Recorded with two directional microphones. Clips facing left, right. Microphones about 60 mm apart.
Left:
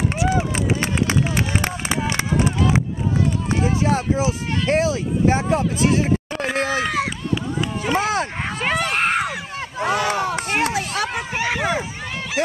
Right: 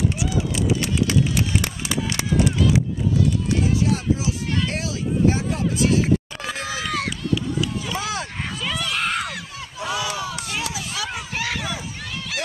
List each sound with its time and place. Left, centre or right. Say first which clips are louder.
0.2 s run: left 3 dB; left
7.8 s a sound: left 7 dB; left
11.3 s run: left 3 dB; centre